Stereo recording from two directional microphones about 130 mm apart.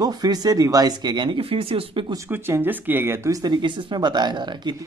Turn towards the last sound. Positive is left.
turn(degrees=-35)  # may be behind; listen again after turning